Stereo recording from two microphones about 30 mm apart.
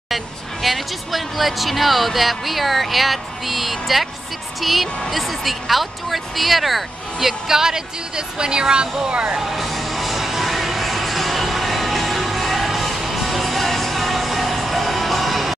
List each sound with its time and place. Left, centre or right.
0.1 s speech: centre; by 9.1 s right
9.1 s speech: right
9.4 s speech: centre
9.7 s music: centre